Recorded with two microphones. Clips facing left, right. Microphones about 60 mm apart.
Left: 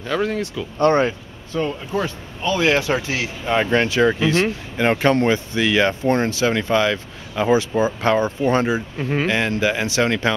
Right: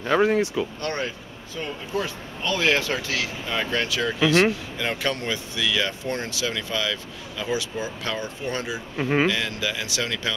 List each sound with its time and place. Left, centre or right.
0.0 s speech: right
0.7 s speech: left
1.6 s speech: centre; by 8.8 s left
8.9 s speech: centre
9.3 s speech: left